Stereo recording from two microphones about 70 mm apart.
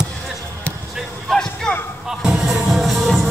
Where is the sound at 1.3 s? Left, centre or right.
Centre.